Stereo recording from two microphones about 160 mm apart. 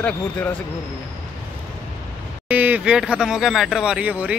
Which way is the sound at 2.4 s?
10° right (ahead or behind).